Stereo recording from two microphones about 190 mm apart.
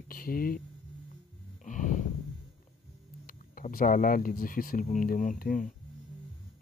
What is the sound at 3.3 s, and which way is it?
Speech, 50° left (ahead or behind).